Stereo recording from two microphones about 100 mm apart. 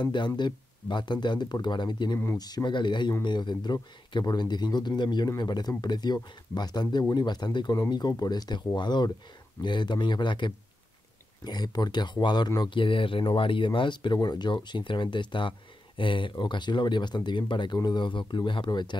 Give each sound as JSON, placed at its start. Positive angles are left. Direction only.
{"t": 0.0, "sound": "speech", "side_deg": 50}
{"t": 12.6, "sound": "speech", "side_deg": 55}